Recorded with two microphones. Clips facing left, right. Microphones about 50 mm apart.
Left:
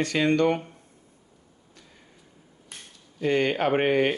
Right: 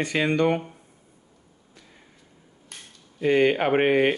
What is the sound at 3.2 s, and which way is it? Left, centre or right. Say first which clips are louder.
Speech: right 3 dB; centre.